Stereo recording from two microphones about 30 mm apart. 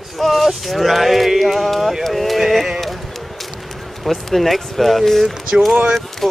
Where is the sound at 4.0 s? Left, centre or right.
Centre.